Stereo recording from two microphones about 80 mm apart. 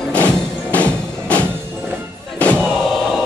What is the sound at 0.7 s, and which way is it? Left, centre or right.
Music, centre.